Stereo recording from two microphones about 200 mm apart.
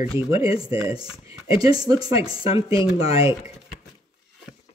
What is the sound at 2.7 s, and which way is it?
Speech, 30° left (ahead or behind).